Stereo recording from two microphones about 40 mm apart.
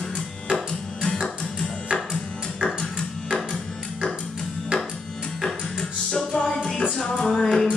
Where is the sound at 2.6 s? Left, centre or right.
Centre.